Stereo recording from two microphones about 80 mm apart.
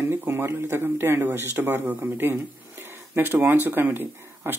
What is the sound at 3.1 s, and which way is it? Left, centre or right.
Speech, right.